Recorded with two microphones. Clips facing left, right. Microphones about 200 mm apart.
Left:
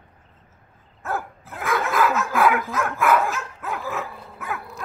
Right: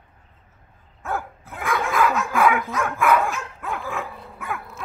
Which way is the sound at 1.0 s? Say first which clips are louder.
Even; centre (ahead or behind).